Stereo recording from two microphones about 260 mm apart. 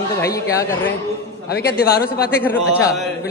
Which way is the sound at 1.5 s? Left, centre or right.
Left.